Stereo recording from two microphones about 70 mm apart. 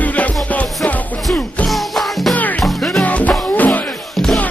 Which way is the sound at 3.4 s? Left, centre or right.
Left.